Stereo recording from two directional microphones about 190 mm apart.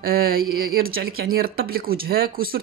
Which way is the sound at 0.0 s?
50° right (ahead or behind).